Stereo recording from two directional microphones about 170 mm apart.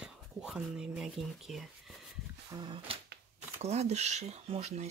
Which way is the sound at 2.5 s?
30° right (ahead or behind).